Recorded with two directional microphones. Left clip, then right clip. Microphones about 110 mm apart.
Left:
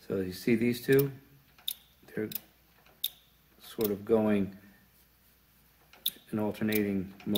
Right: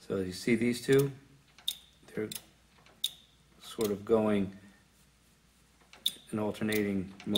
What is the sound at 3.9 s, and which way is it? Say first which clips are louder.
Speech: left 1 dB; 30° left (ahead or behind).